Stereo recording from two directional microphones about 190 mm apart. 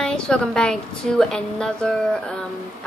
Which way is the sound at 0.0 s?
5° left (ahead or behind).